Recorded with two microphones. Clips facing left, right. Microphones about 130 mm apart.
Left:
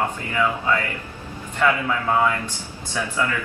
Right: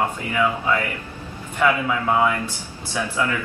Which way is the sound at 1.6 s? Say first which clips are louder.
Right 1 dB; 15° right (ahead or behind).